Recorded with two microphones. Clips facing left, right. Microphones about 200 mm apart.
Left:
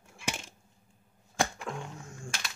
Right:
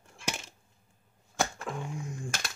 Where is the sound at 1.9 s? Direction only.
15° right (ahead or behind).